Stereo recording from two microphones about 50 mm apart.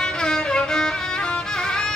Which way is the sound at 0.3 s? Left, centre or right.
Centre.